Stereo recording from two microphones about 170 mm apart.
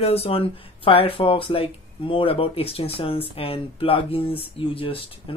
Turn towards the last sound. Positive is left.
turn(degrees=30)  # may be behind; listen again after turning